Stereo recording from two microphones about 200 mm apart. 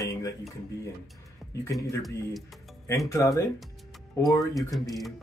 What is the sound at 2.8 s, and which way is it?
Speech, 15° left (ahead or behind).